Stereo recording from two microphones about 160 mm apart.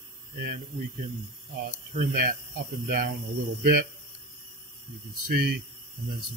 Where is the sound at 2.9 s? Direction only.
60° right (ahead or behind).